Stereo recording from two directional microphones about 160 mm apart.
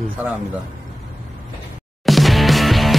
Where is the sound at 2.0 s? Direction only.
Centre (ahead or behind).